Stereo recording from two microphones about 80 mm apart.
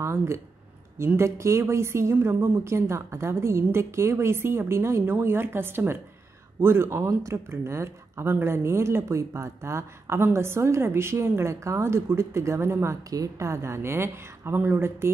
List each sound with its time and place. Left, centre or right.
0.0 s speech: right